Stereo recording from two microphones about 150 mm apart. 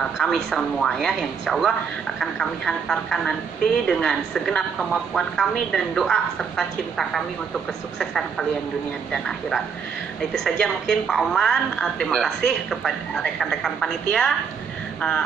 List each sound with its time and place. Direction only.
0.2 s a woman's voice: centre (ahead or behind)